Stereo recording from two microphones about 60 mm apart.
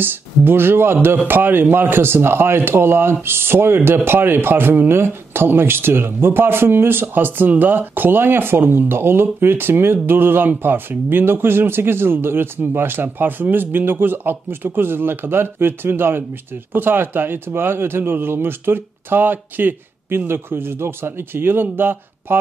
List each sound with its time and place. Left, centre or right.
0.0 s a man's voice: right